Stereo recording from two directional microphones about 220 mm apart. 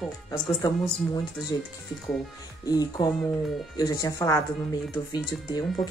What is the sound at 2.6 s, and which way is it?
A woman's voice, 15° left (ahead or behind).